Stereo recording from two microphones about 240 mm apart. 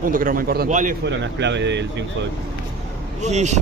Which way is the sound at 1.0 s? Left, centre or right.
Right.